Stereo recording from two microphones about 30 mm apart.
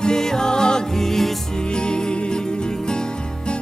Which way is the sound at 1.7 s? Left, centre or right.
Left.